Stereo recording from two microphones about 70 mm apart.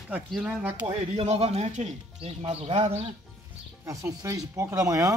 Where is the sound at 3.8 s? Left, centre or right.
Right.